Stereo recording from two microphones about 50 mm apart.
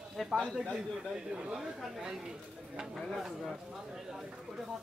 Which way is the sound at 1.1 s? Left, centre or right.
Centre.